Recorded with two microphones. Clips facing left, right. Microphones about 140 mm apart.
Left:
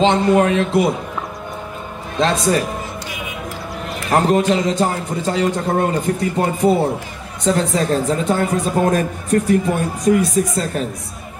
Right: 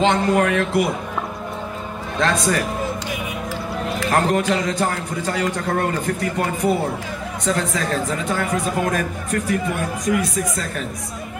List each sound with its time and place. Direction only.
0.0 s a man's voice: 20° left (ahead or behind)
2.1 s a man's voice: 20° left (ahead or behind)
4.1 s a man's voice: 20° left (ahead or behind)